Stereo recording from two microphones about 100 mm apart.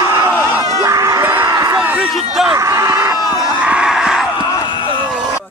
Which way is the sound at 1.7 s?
15° right (ahead or behind).